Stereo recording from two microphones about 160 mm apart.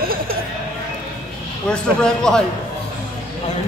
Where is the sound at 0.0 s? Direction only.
65° right (ahead or behind).